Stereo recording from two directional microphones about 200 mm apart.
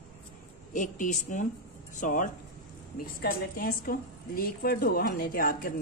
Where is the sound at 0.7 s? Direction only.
40° left (ahead or behind).